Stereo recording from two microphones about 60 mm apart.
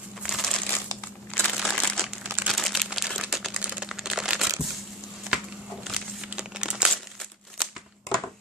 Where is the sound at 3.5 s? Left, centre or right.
Centre.